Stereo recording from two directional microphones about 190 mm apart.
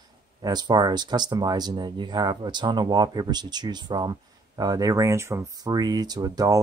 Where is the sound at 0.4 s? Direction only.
20° right (ahead or behind).